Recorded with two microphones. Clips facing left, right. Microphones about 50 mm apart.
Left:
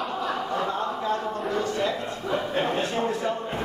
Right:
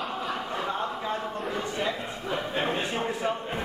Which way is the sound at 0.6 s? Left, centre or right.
Centre.